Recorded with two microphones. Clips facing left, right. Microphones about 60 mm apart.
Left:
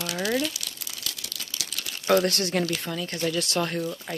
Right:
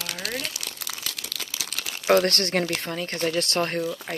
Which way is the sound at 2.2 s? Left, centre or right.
Right.